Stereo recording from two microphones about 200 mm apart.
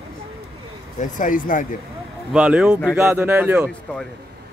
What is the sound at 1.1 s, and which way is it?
Speech, 40° left (ahead or behind).